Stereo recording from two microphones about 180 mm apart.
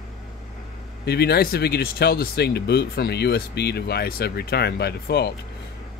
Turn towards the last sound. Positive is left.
turn(degrees=65)  # may be behind; listen again after turning